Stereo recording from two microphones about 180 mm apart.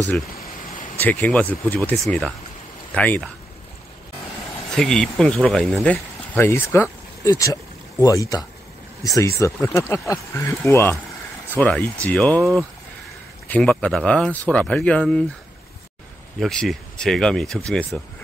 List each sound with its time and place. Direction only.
0.9 s speech: 10° left (ahead or behind)
4.7 s speech: 5° left (ahead or behind)
16.3 s speech: centre (ahead or behind)